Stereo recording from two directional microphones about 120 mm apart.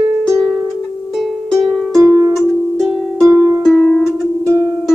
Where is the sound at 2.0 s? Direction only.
25° right (ahead or behind).